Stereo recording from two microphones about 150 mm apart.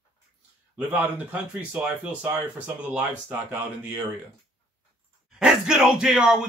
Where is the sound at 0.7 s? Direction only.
10° right (ahead or behind).